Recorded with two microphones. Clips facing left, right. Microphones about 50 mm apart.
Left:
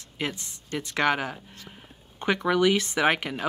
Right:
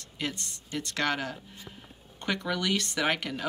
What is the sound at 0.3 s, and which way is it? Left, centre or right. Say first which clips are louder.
A woman's voice: left 3 dB; centre.